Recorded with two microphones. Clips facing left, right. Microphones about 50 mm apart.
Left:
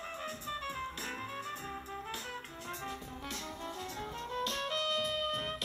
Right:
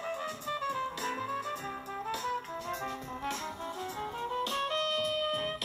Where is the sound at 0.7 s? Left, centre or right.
Right.